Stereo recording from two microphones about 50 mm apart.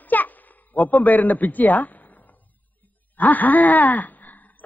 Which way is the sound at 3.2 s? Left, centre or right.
Left.